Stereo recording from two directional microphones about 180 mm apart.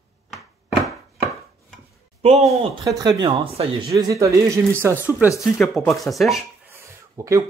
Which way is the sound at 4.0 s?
20° right (ahead or behind).